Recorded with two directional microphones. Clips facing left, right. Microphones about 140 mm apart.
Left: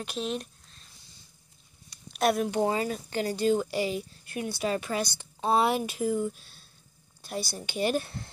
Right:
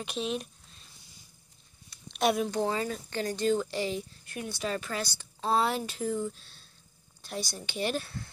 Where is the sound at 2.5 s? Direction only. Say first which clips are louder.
Left 3 dB; 15° left (ahead or behind).